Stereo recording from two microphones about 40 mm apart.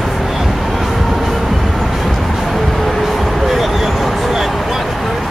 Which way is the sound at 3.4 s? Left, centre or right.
Centre.